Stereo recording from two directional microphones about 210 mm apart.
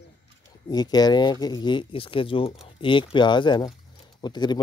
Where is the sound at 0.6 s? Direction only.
20° left (ahead or behind).